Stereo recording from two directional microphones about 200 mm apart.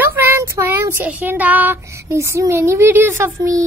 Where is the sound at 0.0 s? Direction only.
10° right (ahead or behind).